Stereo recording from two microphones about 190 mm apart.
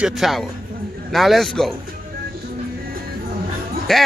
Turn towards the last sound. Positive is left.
turn(degrees=0)  # may be behind; listen again after turning